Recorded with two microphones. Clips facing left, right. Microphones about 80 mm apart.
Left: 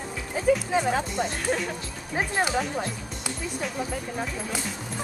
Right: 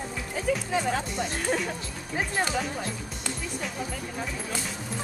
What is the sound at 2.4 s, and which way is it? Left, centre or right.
Speech, centre.